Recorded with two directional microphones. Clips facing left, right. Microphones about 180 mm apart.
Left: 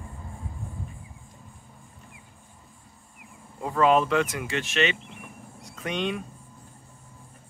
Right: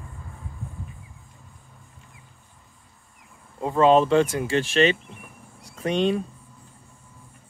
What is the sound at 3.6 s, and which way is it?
Speech, 30° right (ahead or behind).